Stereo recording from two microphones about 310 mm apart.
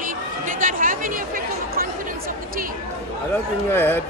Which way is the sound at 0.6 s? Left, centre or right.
Right.